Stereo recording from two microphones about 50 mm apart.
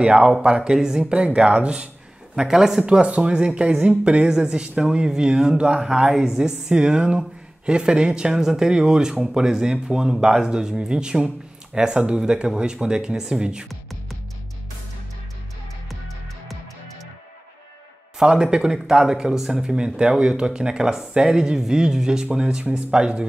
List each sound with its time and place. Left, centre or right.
0.0 s speech: right
2.3 s speech: centre
2.9 s speech: right
18.2 s speech: centre